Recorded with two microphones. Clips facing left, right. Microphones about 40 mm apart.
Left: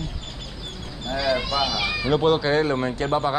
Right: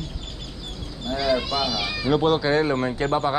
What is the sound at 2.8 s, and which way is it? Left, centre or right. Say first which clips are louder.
Speech: even; centre.